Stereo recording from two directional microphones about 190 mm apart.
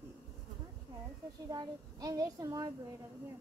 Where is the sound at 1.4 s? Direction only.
20° right (ahead or behind).